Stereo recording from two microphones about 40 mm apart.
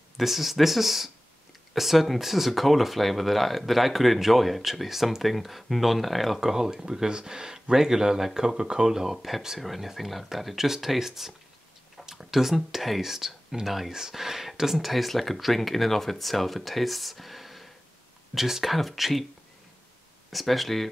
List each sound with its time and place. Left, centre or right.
0.2 s speech: centre
6.4 s speech: centre
20.2 s speech: centre